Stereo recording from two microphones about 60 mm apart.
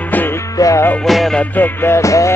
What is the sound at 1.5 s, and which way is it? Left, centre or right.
Music, left.